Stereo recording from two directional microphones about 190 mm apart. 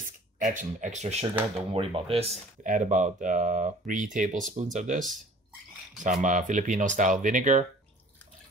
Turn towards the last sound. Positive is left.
turn(degrees=-40)  # may be behind; listen again after turning